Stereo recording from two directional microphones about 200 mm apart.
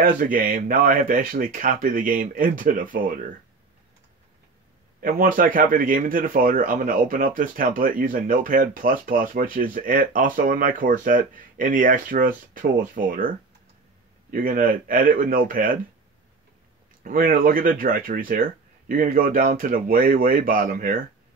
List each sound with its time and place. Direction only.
0.0 s speech: 45° right (ahead or behind)
5.0 s speech: 45° right (ahead or behind)
14.3 s speech: 45° right (ahead or behind)
17.0 s speech: 45° right (ahead or behind)